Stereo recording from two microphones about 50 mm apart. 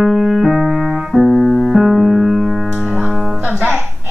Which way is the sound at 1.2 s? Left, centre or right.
Centre.